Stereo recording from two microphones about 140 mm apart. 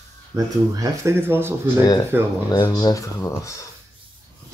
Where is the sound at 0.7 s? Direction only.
20° right (ahead or behind).